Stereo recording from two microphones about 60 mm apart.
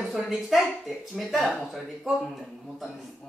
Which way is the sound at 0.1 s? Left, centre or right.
Centre.